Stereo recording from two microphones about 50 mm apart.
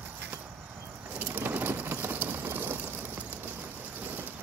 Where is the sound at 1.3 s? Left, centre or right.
Right.